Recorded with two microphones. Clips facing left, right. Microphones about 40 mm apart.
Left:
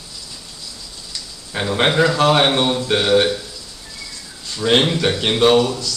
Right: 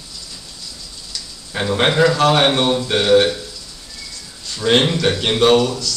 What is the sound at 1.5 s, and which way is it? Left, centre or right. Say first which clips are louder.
Speech: right 1 dB; centre.